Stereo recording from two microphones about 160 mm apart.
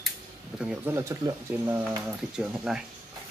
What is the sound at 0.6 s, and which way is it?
Speech, 5° right (ahead or behind).